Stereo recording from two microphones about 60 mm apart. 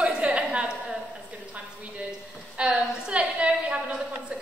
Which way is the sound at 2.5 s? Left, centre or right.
Centre.